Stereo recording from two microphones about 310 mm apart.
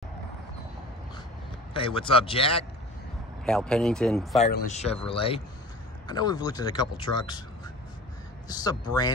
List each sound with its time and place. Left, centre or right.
1.7 s a man's voice: centre
3.4 s speech: centre
4.4 s a man's voice: left